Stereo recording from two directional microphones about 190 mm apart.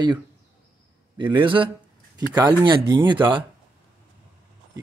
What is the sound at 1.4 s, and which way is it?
Speech, 25° right (ahead or behind).